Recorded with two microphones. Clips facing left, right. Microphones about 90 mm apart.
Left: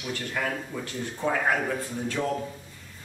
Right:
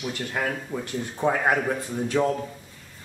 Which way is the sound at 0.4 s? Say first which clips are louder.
Right 3 dB; 25° right (ahead or behind).